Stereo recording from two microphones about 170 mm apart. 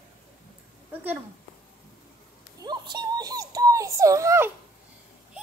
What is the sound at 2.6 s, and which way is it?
A child's voice, 25° right (ahead or behind).